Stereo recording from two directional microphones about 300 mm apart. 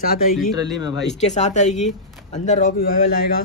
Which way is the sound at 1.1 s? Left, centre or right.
Left.